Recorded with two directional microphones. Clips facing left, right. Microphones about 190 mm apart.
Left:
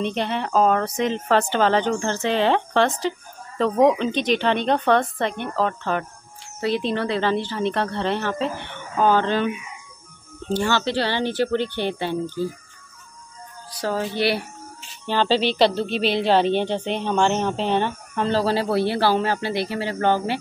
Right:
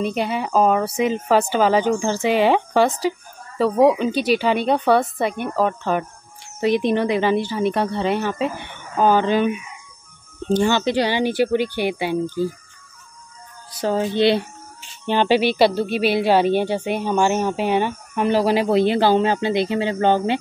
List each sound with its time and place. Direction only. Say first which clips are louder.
0.0 s speech: right 2 dB; 5° right (ahead or behind)
13.7 s speech: right 5 dB; 20° right (ahead or behind)